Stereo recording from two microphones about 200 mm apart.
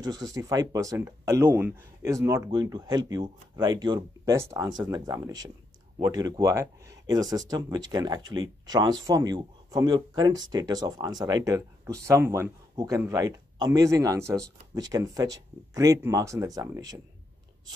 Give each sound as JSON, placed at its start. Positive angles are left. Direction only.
{"t": 0.0, "sound": "speech", "side_deg": -20}